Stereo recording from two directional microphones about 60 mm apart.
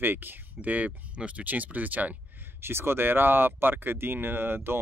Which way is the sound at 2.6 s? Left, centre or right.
Right.